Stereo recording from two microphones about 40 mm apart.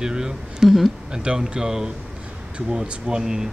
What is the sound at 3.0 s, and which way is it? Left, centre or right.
Speech, centre.